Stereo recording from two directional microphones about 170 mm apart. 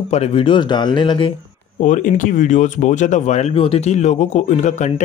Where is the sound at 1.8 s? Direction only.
50° left (ahead or behind).